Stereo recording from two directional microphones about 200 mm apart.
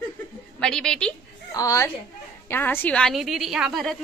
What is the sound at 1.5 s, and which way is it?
A woman's voice, 15° left (ahead or behind).